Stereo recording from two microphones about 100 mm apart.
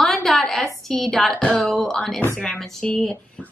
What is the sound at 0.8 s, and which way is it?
A woman's voice, 5° left (ahead or behind).